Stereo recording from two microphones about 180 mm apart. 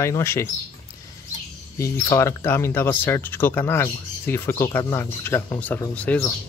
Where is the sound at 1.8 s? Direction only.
15° left (ahead or behind).